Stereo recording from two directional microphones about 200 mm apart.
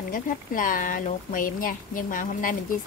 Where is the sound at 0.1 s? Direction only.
45° left (ahead or behind).